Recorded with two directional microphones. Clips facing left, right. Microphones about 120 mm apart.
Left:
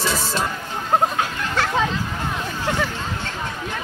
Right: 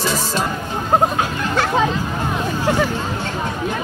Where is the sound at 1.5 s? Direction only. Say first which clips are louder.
Right 4 dB; 25° right (ahead or behind).